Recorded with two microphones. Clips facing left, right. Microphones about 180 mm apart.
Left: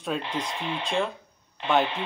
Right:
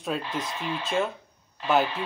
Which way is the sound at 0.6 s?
25° left (ahead or behind).